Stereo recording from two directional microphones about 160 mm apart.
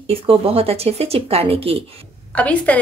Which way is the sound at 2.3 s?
10° left (ahead or behind).